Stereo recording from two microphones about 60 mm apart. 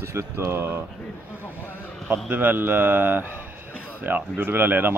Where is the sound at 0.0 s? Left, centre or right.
Right.